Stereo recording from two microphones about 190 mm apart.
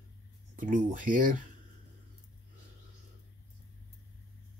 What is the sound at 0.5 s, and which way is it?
Speech, 45° right (ahead or behind).